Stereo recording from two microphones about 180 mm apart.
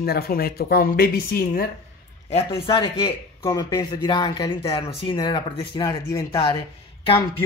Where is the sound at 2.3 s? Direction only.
30° left (ahead or behind).